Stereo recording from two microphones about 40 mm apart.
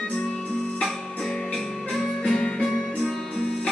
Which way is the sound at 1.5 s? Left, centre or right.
Centre.